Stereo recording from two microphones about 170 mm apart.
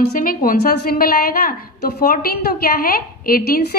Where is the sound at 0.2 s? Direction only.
55° left (ahead or behind).